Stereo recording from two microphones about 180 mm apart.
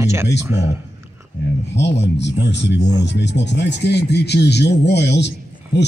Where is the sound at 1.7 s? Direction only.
70° left (ahead or behind).